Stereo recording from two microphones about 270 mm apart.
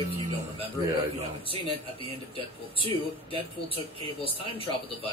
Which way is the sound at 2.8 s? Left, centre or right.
Centre.